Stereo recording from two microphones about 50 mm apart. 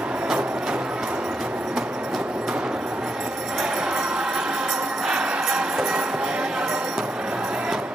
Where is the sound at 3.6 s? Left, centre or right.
Centre.